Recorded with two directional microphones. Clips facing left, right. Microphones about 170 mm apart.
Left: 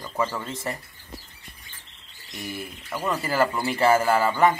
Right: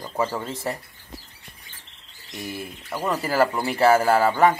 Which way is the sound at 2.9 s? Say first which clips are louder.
Right 2 dB; 10° right (ahead or behind).